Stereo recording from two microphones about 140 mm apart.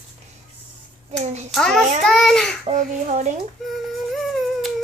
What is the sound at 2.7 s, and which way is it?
Speech, 60° right (ahead or behind).